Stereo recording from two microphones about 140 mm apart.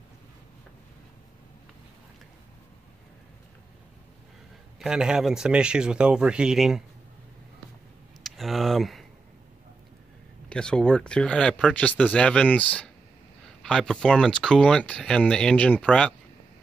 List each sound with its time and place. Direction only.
4.7 s speech: 5° right (ahead or behind)
8.2 s a sound: centre (ahead or behind)
10.5 s speech: 5° left (ahead or behind)